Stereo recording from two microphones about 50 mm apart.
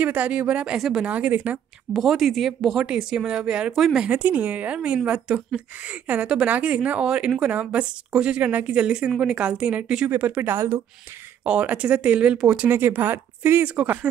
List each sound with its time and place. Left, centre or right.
0.0 s a woman's voice: right
0.7 s a woman's voice: centre
1.0 s a woman's voice: right
2.0 s speech: centre
2.8 s a woman's voice: centre
3.7 s speech: centre
4.1 s a woman's voice: right; by 8.4 s centre
8.4 s speech: right
8.6 s a woman's voice: centre; by 10.6 s right
11.4 s a woman's voice: right
12.6 s speech: right